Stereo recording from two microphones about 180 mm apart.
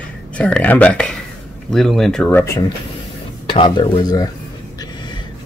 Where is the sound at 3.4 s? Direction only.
30° left (ahead or behind).